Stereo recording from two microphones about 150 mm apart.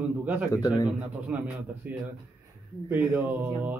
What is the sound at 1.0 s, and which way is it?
Speech, 10° right (ahead or behind).